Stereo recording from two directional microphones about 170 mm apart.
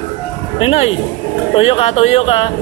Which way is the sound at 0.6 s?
35° left (ahead or behind).